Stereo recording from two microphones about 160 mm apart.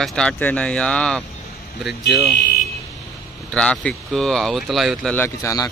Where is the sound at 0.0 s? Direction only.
5° left (ahead or behind).